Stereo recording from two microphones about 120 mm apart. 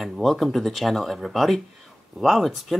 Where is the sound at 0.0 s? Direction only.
Centre (ahead or behind).